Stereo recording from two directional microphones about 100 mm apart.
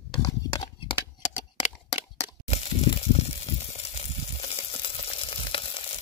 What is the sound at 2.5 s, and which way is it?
Snake, 90° left.